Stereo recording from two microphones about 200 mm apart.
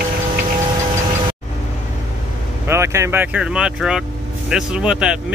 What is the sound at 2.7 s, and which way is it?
Speech, 15° right (ahead or behind).